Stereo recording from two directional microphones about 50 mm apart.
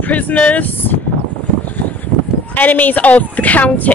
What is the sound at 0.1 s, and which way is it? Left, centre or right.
Speech, left.